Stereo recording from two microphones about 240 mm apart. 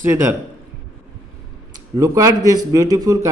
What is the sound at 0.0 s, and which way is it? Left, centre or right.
Speech, centre.